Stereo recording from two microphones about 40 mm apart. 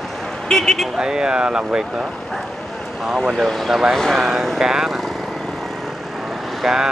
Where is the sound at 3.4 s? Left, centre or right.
Centre.